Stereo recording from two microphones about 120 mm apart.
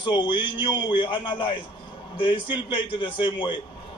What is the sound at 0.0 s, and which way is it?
A man's voice, 40° left (ahead or behind).